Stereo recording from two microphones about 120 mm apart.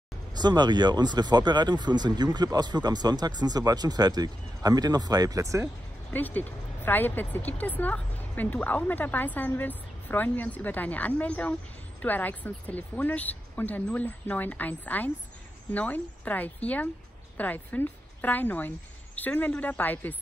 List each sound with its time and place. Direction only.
0.4 s speech: 35° right (ahead or behind)
6.1 s a woman's voice: 15° left (ahead or behind)